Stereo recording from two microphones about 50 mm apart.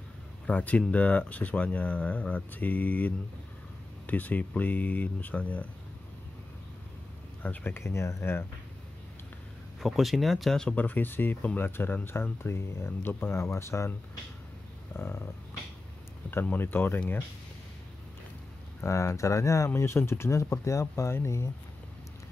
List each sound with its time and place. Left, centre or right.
0.5 s speech: left
4.1 s speech: left
7.4 s speech: left
7.7 s speech: left
8.2 s speech: left
9.8 s speech: centre
10.8 s speech: left
13.3 s speech: left
15.0 s speech: left
16.4 s speech: left
18.9 s speech: left
19.7 s speech: left
20.8 s speech: left